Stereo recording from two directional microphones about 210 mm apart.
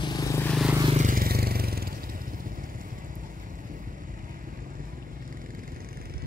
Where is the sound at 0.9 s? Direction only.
40° right (ahead or behind).